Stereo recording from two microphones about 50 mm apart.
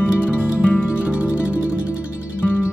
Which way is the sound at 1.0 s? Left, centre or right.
Right.